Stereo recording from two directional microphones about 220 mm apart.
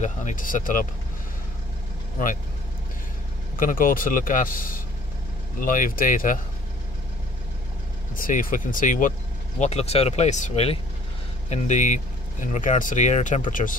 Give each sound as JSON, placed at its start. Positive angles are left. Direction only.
{"t": 0.0, "sound": "speech", "side_deg": 35}
{"t": 3.5, "sound": "speech", "side_deg": 40}
{"t": 8.2, "sound": "speech", "side_deg": 40}